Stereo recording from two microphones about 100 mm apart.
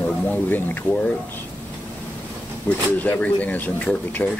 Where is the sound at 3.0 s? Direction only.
15° left (ahead or behind).